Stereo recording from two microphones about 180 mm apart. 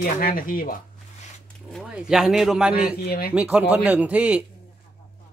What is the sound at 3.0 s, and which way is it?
Speech, 55° left (ahead or behind).